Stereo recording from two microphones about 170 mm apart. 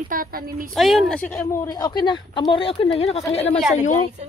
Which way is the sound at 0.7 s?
Centre (ahead or behind).